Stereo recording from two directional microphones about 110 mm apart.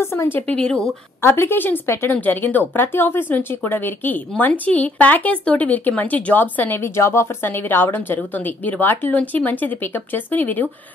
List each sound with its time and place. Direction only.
0.0 s speech: 25° left (ahead or behind)
1.2 s speech: 20° left (ahead or behind)